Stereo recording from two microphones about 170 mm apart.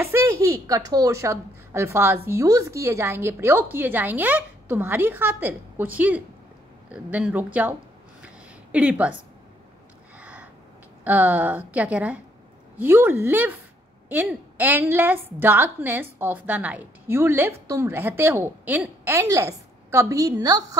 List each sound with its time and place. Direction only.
0.0 s a woman's voice: 15° right (ahead or behind)
8.7 s a woman's voice: 5° right (ahead or behind)
10.1 s a sound: 10° right (ahead or behind)
11.1 s a woman's voice: 10° right (ahead or behind)